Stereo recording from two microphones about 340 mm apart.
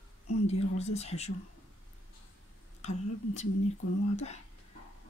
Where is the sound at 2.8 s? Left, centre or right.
Centre.